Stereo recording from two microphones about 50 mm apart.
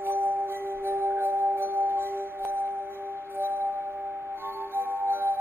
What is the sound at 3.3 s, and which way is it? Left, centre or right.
Music, right.